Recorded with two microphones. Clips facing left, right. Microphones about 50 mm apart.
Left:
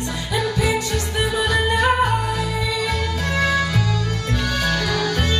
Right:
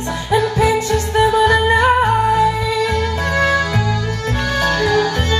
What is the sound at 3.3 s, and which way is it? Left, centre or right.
Music, right.